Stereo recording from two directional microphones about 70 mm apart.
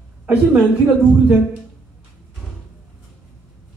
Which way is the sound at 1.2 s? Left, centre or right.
Centre.